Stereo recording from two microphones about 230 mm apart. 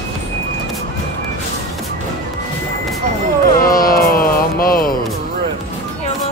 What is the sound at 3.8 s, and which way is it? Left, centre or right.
Music, left.